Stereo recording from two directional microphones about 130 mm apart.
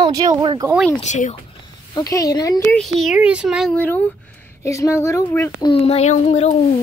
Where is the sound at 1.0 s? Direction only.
65° left (ahead or behind).